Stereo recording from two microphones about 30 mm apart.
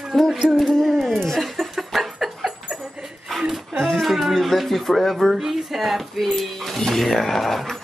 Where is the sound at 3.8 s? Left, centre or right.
Centre.